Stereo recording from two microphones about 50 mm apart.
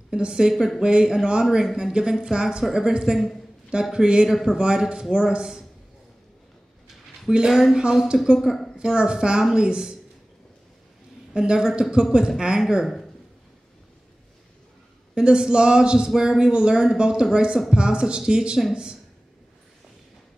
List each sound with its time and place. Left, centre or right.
0.1 s speech: centre
7.3 s speech: centre
11.3 s speech: centre
12.8 s speech: centre
15.1 s speech: centre